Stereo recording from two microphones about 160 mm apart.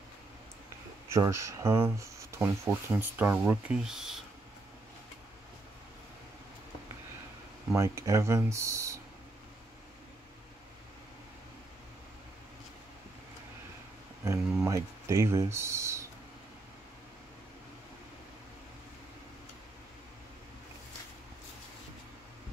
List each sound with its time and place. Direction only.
1.0 s speech: 15° right (ahead or behind)
7.7 s speech: 20° right (ahead or behind)
14.2 s speech: 20° right (ahead or behind)